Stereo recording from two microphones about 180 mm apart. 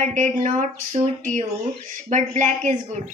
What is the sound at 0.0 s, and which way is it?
Speech, 45° right (ahead or behind).